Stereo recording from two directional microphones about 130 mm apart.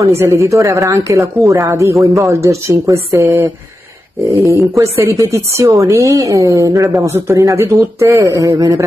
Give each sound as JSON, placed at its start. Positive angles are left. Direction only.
{"t": 0.2, "sound": "a woman's voice", "side_deg": -20}